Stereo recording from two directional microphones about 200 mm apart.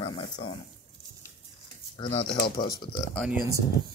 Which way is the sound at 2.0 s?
25° left (ahead or behind).